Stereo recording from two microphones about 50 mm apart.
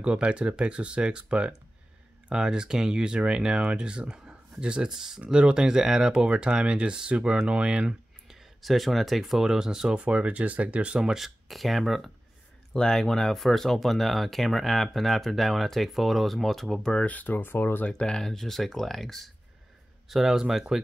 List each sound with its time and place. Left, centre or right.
0.0 s speech: right
8.3 s speech: centre
10.0 s speech: right
11.0 s speech: centre
12.7 s speech: centre
17.0 s speech: left
17.8 s speech: centre